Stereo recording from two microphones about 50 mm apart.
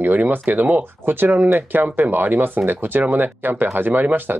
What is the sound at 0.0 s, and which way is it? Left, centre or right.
Speech, right.